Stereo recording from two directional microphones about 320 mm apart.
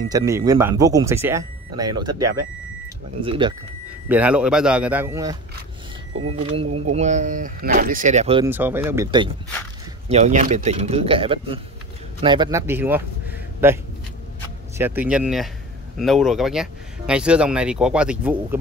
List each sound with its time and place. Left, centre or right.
0.1 s speech: centre
4.1 s speech: centre
8.5 s speech: centre